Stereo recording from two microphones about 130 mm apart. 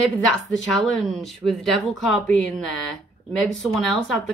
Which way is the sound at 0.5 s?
5° left (ahead or behind).